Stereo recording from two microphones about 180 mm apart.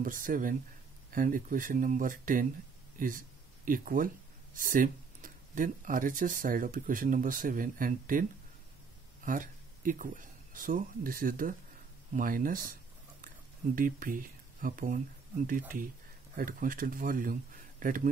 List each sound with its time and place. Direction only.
0.0 s speech: 50° right (ahead or behind)
13.7 s speech: 50° right (ahead or behind)
16.3 s speech: 50° right (ahead or behind)